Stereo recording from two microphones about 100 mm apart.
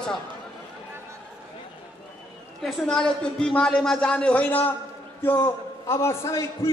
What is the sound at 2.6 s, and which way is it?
A man's voice, 5° left (ahead or behind).